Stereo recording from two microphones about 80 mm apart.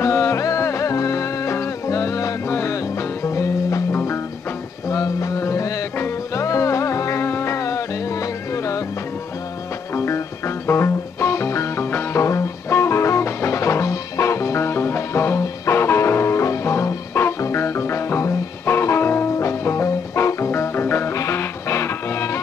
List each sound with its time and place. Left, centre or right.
0.0 s music: left
4.8 s a sound: left
5.9 s music: left
6.4 s music: left
9.9 s music: left